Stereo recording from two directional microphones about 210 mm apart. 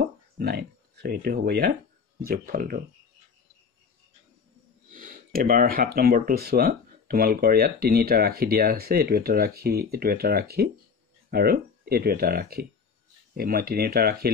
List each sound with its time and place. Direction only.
0.0 s speech: 50° right (ahead or behind)
4.8 s speech: 40° right (ahead or behind)